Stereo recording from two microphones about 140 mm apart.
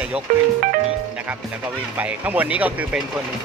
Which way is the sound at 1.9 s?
10° right (ahead or behind).